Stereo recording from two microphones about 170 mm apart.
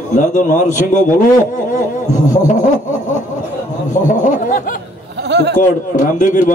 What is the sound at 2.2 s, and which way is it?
Speech, 50° left (ahead or behind).